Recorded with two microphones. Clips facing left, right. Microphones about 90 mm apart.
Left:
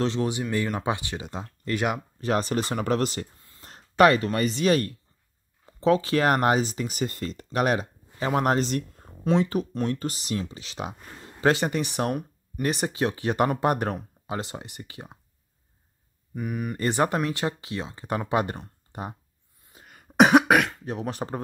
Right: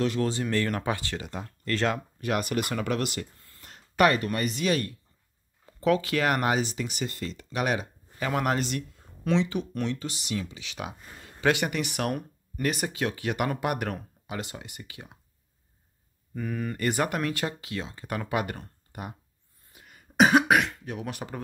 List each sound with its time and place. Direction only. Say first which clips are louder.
0.0 s speech: left 1 dB; 25° left (ahead or behind)
0.3 s speech: even; 15° left (ahead or behind)
2.1 s speech: left 3 dB; 30° left (ahead or behind)
3.3 s a sound: left 1 dB; 20° left (ahead or behind)
3.6 s a sound: left 4 dB; 35° left (ahead or behind)
4.3 s speech: left 4 dB; 30° left (ahead or behind)
5.7 s speech: left 3 dB; 30° left (ahead or behind)
16.3 s speech: left 1 dB; 15° left (ahead or behind)
19.9 s cough: left 3 dB; 55° left (ahead or behind)
20.8 s speech: left 4 dB; 35° left (ahead or behind)